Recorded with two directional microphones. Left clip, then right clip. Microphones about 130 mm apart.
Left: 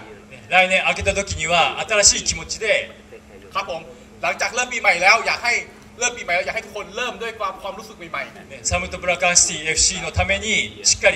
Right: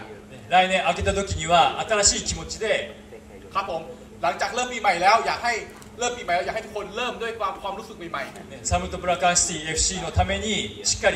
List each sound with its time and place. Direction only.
0.5 s a man's voice: 15° left (ahead or behind)